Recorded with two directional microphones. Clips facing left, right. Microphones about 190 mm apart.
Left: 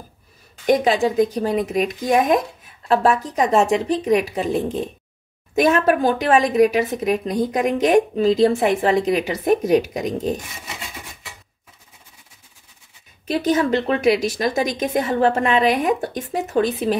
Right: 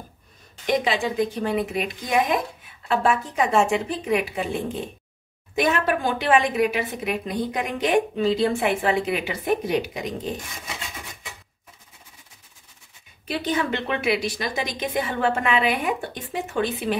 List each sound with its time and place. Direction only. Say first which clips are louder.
0.7 s a woman's voice: left 6 dB; 45° left (ahead or behind)
13.3 s a woman's voice: left 7 dB; 45° left (ahead or behind)